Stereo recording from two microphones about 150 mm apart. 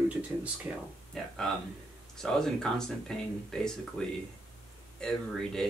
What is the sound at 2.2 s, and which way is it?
Speech, 5° left (ahead or behind).